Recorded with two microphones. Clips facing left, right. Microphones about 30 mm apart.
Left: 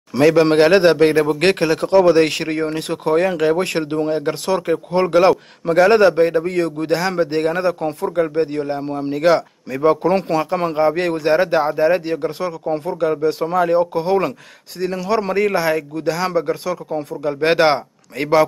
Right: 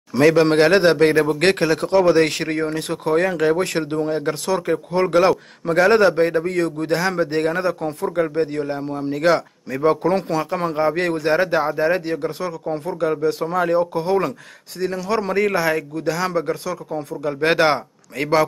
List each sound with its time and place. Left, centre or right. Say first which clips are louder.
0.2 s a man's voice: left 2 dB; centre; by 5.0 s left
5.3 s a man's voice: left 3 dB; centre
6.5 s a man's voice: left 2 dB; centre
8.4 s a man's voice: left 2 dB; centre
9.1 s a man's voice: left 3 dB; centre
10.2 s a man's voice: left 3 dB; left
17.6 s speech: left 2 dB; left